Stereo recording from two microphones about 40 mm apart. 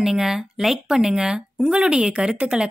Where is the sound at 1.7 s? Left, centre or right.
Right.